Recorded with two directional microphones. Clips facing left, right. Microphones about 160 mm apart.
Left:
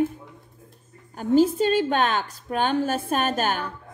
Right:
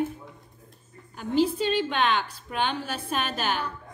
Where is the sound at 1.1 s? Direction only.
45° left (ahead or behind).